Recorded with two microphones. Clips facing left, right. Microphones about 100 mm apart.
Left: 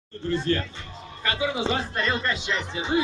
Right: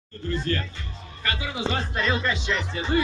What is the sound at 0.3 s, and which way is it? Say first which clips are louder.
Speech: left 3 dB; 25° left (ahead or behind).